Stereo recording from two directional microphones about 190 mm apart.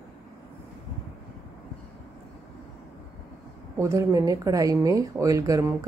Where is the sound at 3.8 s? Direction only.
15° right (ahead or behind).